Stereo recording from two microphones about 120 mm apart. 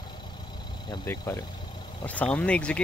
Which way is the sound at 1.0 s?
20° left (ahead or behind).